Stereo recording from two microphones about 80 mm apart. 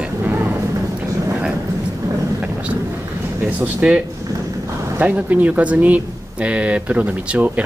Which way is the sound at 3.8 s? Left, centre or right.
Centre.